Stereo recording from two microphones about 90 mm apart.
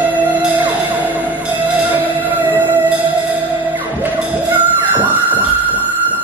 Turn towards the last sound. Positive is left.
turn(degrees=-20)  # may be behind; listen again after turning